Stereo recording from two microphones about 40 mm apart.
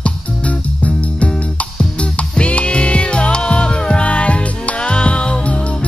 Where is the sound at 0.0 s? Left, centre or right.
Left.